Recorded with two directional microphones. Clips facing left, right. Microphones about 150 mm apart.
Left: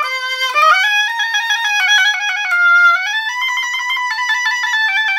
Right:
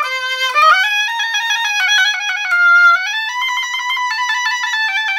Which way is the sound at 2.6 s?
5° left (ahead or behind).